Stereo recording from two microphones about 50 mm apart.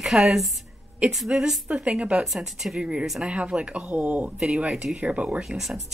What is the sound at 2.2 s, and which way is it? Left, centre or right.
Speech, centre.